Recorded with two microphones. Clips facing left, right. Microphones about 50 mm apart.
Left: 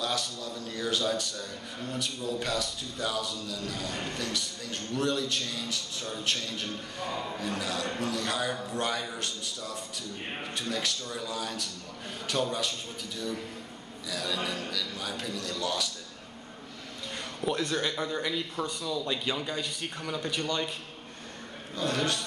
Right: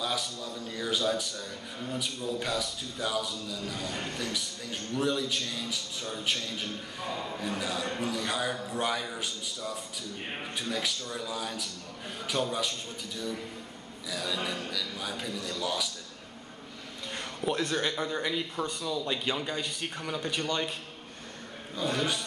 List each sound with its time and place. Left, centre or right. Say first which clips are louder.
0.0 s a man's voice: left 1 dB; centre
17.1 s a sound: even; centre
17.5 s a man's voice: even; right
17.7 s a man's voice: even; centre
20.2 s a man's voice: even; centre
21.7 s a man's voice: left 1 dB; centre